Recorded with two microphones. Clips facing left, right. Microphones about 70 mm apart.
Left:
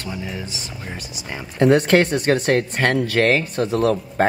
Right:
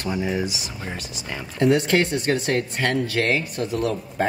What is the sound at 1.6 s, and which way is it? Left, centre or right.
Speech, left.